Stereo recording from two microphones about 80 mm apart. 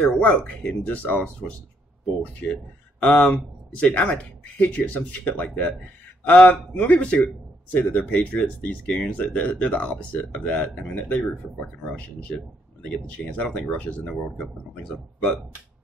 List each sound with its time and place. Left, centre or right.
0.0 s speech: centre
2.4 s speech: centre